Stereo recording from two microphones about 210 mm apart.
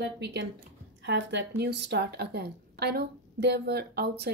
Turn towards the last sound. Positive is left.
turn(degrees=-50)  # may be behind; listen again after turning